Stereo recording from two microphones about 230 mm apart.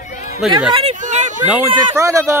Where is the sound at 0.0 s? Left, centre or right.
Left.